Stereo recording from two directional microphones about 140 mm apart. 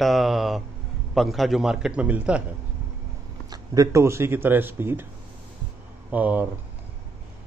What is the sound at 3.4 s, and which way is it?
Speech, 25° right (ahead or behind).